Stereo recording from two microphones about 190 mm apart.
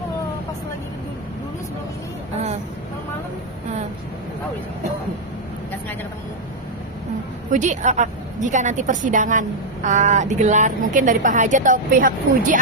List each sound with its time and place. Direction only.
7.5 s a woman's voice: 40° right (ahead or behind)